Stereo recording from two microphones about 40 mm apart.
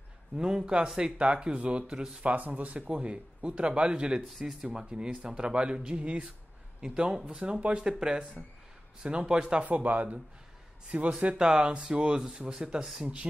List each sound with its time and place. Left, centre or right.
0.4 s speech: right
1.1 s speech: right
2.3 s speech: right
4.3 s speech: centre
4.6 s speech: right
7.2 s speech: right
9.7 s a man's voice: right
11.3 s speech: right
13.0 s speech: right